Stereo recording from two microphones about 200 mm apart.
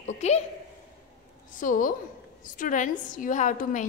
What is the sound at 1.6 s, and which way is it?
A woman's voice, 40° left (ahead or behind).